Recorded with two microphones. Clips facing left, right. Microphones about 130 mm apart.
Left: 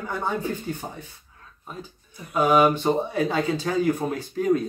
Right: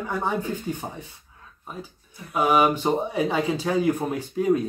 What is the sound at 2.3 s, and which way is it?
Speech, 10° right (ahead or behind).